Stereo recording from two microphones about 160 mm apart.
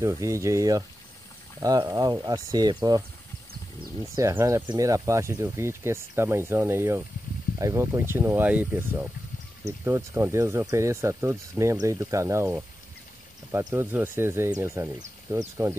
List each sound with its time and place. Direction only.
0.0 s speech: 20° right (ahead or behind)
4.0 s speech: 20° right (ahead or behind)